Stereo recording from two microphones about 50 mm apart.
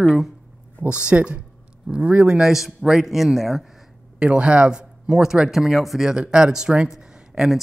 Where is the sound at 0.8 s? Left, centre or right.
Right.